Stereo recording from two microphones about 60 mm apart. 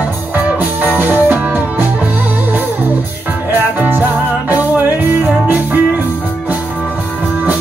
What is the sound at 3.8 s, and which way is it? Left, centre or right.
Music, right.